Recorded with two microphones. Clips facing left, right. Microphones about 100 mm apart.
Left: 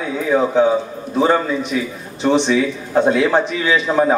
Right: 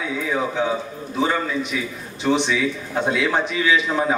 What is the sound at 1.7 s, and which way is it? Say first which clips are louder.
A man's voice: left 5 dB; 45° left (ahead or behind).